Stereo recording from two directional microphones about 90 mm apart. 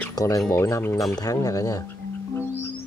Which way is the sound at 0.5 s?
35° left (ahead or behind).